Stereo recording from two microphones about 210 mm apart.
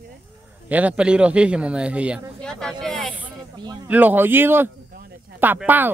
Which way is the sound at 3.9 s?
10° right (ahead or behind).